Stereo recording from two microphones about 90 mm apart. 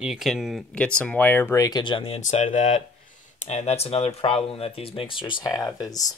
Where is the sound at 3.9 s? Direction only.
90° left; by 5.4 s 70° left (ahead or behind).